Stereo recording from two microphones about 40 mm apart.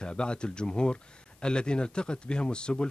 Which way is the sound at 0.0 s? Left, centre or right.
Left.